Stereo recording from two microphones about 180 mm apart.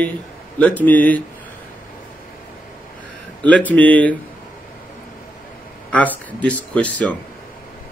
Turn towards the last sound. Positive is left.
turn(degrees=10)  # may be behind; listen again after turning